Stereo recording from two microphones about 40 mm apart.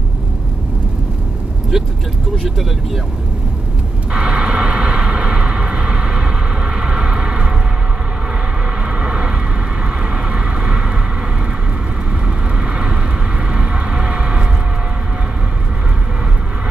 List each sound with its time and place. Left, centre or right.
1.7 s speech: centre
4.1 s vehicle: right
8.8 s vehicle: right
12.7 s vehicle: right